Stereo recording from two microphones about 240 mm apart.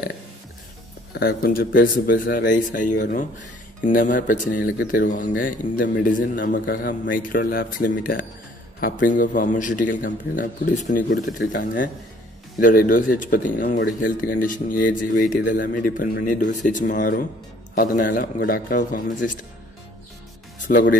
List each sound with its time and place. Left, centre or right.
1.1 s speech: left
16.9 s speech: left
20.5 s music: left